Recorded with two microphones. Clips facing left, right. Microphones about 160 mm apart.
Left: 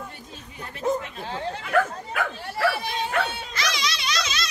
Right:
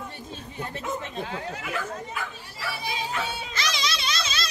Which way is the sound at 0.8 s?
30° left (ahead or behind).